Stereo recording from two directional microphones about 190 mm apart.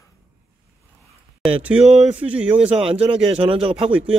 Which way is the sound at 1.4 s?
5° right (ahead or behind).